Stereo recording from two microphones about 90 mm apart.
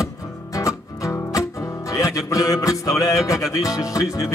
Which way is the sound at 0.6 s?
40° left (ahead or behind).